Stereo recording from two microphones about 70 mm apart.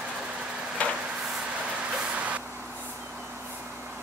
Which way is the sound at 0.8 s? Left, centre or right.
Centre.